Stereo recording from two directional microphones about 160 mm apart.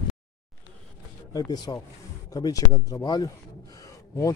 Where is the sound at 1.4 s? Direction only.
25° left (ahead or behind).